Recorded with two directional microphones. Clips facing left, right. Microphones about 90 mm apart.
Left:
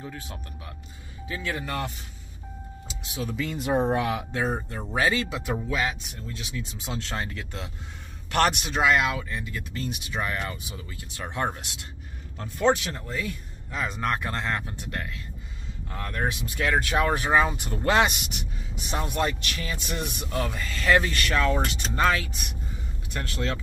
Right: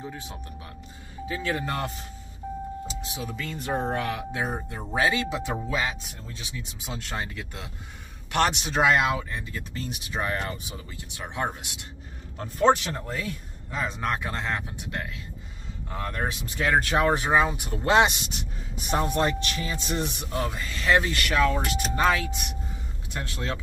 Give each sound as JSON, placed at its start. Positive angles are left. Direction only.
{"t": 0.1, "sound": "a man's voice", "side_deg": -20}
{"t": 3.4, "sound": "speech", "side_deg": 15}
{"t": 4.3, "sound": "a man's voice", "side_deg": -15}
{"t": 8.7, "sound": "speech", "side_deg": -30}
{"t": 11.1, "sound": "speech", "side_deg": -15}
{"t": 12.4, "sound": "a man's voice", "side_deg": -35}
{"t": 17.5, "sound": "speech", "side_deg": -10}
{"t": 17.8, "sound": "a man's voice", "side_deg": -25}
{"t": 23.1, "sound": "a man's voice", "side_deg": -20}